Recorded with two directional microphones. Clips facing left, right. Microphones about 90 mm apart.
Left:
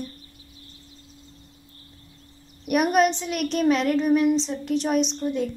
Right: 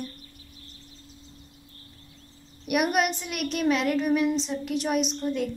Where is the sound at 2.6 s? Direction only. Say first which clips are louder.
Left 4 dB; 40° left (ahead or behind).